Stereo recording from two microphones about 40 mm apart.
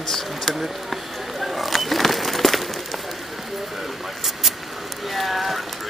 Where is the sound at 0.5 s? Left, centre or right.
Centre.